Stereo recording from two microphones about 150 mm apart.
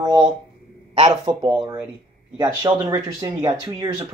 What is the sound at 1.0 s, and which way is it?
Speech, 25° right (ahead or behind).